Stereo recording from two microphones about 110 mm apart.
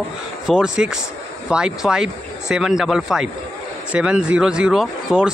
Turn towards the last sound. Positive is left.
turn(degrees=-5)  # may be behind; listen again after turning